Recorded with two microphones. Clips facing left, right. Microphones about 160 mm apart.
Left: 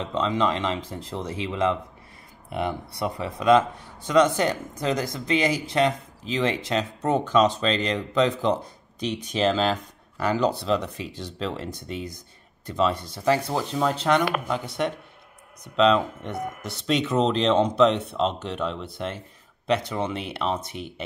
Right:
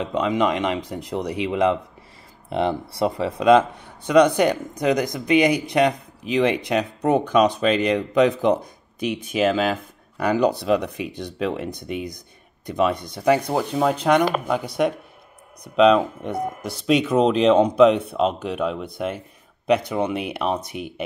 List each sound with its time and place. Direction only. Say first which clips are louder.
0.0 s speech: right 3 dB; 15° right (ahead or behind)